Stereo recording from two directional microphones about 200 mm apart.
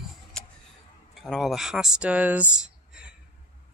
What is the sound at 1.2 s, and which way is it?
Speech, centre (ahead or behind).